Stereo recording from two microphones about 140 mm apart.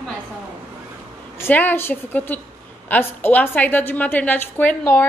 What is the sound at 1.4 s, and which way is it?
A woman's voice, 15° left (ahead or behind).